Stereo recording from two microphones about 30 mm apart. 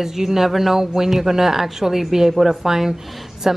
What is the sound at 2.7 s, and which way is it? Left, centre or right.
Speech, centre.